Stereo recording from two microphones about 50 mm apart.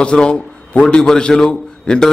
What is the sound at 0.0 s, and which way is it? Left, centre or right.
A man's voice, centre.